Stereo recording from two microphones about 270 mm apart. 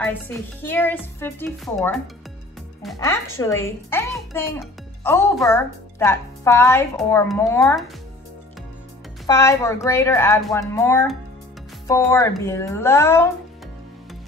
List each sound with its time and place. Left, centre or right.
0.0 s speech: centre
3.0 s speech: centre
9.2 s speech: centre